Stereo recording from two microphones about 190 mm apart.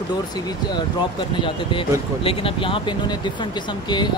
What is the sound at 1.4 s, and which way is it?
Speech, 25° left (ahead or behind).